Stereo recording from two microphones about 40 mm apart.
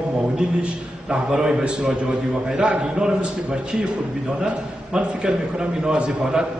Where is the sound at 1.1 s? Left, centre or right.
Centre.